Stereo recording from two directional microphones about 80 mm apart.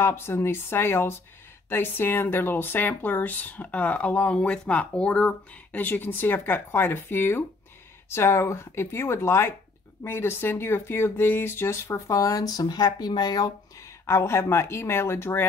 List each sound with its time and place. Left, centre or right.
0.0 s speech: left
13.7 s speech: left